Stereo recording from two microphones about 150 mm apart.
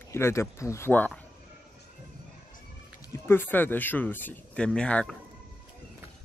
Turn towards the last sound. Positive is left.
turn(degrees=5)  # may be behind; listen again after turning